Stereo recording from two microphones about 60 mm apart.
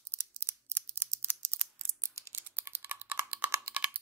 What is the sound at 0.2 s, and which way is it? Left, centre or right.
Scissors, right.